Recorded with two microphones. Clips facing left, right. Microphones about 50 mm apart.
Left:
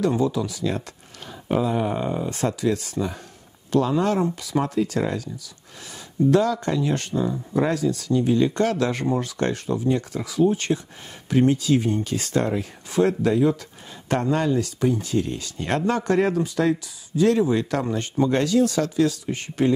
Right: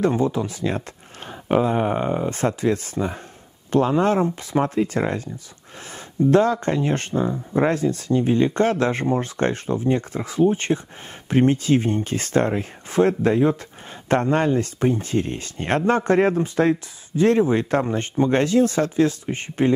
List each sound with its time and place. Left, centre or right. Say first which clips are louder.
0.0 s speech: right 1 dB; right
6.3 s speech: right 4 dB; right